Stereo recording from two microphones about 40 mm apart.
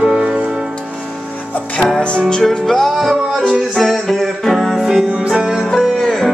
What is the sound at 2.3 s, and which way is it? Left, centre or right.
Music, centre.